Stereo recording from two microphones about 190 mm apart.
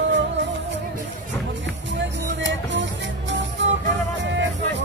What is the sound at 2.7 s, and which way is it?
Music, 70° right (ahead or behind).